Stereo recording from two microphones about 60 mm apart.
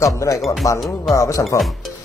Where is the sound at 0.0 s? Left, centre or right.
Left.